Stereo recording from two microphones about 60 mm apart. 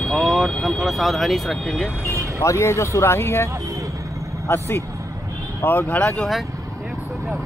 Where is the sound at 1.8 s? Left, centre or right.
Left.